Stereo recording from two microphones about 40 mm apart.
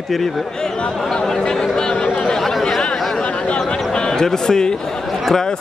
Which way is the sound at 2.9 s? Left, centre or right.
Centre.